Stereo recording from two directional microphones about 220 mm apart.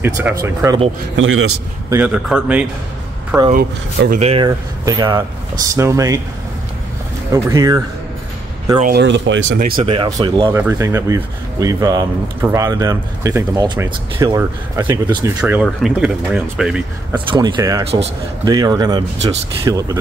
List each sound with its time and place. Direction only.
0.0 s speech: 10° right (ahead or behind)
1.1 s a man's voice: 60° right (ahead or behind)
1.9 s speech: 5° right (ahead or behind)
3.5 s speech: 40° right (ahead or behind)
4.5 s speech: 15° right (ahead or behind)
7.3 s speech: 15° right (ahead or behind)
8.8 s speech: 50° right (ahead or behind)
9.8 s speech: 20° right (ahead or behind)
15.4 s speech: 5° right (ahead or behind)
17.1 s speech: 20° right (ahead or behind)